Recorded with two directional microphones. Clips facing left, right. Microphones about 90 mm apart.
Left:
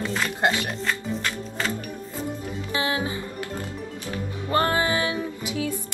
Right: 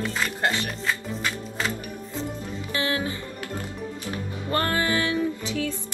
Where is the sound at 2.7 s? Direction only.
20° left (ahead or behind).